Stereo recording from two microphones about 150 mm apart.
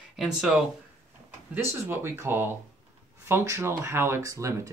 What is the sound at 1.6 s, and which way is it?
Speech, 15° right (ahead or behind).